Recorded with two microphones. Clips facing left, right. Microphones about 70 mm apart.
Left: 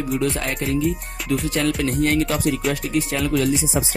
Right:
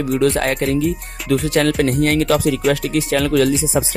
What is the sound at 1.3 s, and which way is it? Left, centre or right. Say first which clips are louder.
Speech: right 5 dB; right.